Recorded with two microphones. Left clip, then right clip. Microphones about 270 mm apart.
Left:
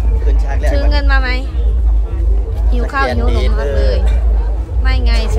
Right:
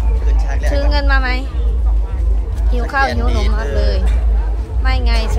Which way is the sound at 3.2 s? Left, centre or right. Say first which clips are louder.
Left 2 dB; centre.